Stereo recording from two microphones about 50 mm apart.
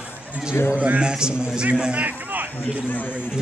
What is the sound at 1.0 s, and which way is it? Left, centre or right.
A man's voice, centre.